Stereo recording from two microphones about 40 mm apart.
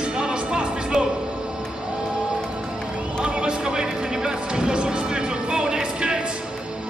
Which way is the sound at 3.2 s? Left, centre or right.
Right.